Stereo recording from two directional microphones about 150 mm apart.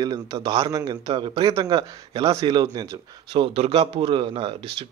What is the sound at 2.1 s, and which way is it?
Speech, 40° right (ahead or behind).